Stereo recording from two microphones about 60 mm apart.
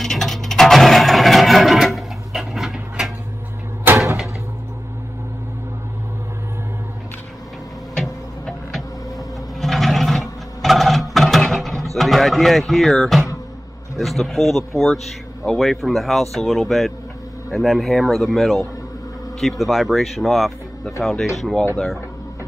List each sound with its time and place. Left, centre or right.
0.0 s a sound: centre
3.9 s door: right
7.9 s a sound: centre
9.6 s sewing machine: centre
13.9 s speech: centre
19.6 s speech: centre